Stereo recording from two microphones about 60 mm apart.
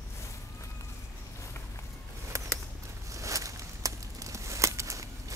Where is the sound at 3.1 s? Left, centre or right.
Right.